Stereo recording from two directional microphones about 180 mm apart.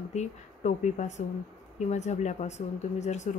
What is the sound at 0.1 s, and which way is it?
Speech, 40° left (ahead or behind).